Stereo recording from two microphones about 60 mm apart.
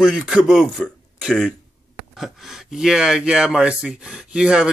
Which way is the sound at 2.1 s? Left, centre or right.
Centre.